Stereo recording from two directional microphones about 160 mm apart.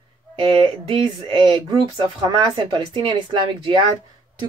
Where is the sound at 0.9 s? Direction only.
30° right (ahead or behind).